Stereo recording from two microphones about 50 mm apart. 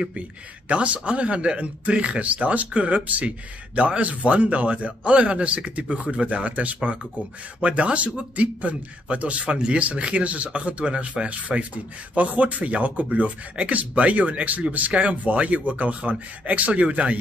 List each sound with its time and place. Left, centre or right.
0.7 s speech: right